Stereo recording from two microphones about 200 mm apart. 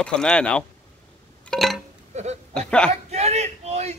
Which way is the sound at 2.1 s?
35° right (ahead or behind).